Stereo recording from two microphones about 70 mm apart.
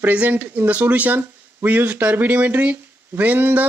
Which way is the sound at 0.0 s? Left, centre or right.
Right.